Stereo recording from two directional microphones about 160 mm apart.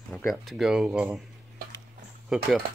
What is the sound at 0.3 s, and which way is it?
Speech, centre (ahead or behind).